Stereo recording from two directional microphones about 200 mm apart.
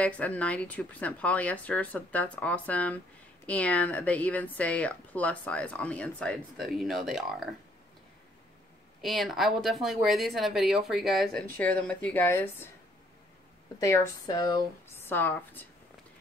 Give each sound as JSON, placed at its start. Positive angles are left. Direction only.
{"t": 0.0, "sound": "speech", "side_deg": 5}
{"t": 9.0, "sound": "speech", "side_deg": 0}
{"t": 13.7, "sound": "speech", "side_deg": 20}